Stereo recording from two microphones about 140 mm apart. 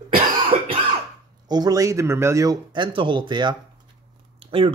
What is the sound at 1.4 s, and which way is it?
Speech, 30° right (ahead or behind).